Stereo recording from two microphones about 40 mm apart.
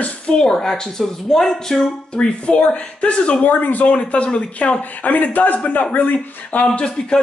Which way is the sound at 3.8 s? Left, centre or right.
Left.